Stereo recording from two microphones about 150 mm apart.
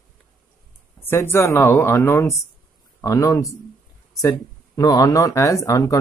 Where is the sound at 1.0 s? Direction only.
15° left (ahead or behind).